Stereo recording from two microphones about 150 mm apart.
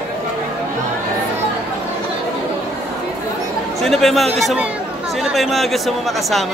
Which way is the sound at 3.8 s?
Centre (ahead or behind).